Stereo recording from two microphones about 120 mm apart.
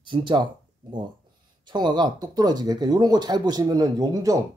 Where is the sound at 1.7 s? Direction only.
40° right (ahead or behind).